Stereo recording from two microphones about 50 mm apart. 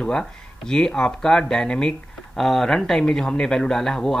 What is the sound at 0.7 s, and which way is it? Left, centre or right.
Speech, centre.